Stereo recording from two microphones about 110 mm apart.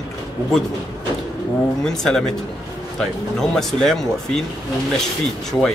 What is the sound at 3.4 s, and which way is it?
Speech, 5° left (ahead or behind).